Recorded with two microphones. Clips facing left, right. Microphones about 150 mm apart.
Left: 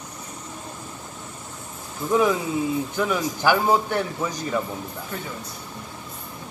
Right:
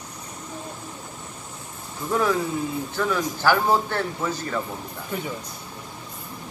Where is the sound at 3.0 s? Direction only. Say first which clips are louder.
Left 1 dB; 15° left (ahead or behind).